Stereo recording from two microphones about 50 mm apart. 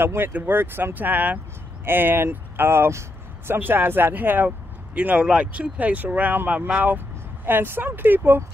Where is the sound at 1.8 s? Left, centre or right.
Right.